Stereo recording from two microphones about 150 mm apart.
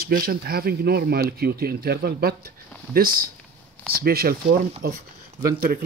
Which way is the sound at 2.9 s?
75° right (ahead or behind).